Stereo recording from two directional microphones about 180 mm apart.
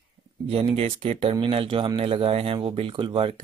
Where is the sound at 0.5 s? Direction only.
30° right (ahead or behind).